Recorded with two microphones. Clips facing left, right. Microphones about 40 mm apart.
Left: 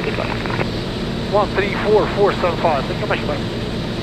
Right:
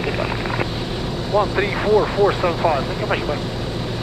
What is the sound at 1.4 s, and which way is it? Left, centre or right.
Speech, centre.